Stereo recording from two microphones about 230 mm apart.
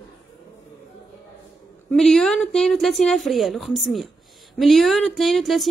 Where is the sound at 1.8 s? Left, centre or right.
Centre.